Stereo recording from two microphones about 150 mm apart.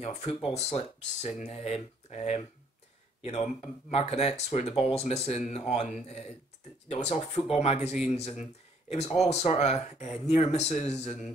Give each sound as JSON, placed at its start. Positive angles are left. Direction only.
{"t": 0.6, "sound": "speech", "side_deg": 45}